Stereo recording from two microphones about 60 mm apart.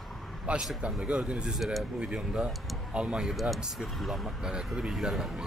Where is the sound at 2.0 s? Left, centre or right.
Centre.